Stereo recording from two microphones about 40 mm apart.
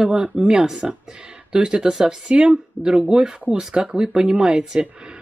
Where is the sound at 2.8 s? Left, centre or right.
Right.